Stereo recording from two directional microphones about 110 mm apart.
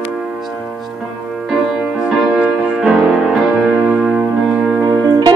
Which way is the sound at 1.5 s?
Centre (ahead or behind).